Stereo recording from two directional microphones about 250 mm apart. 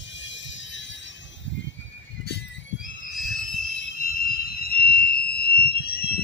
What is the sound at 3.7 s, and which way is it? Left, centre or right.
Fire alarm, left.